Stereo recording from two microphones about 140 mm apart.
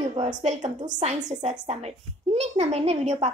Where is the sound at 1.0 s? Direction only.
55° right (ahead or behind).